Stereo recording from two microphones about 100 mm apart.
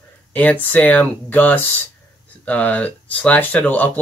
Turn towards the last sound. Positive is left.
turn(degrees=15)  # may be behind; listen again after turning